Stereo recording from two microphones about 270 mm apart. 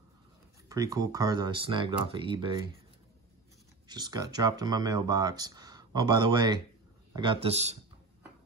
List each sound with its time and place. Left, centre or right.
0.7 s speech: centre
3.9 s speech: centre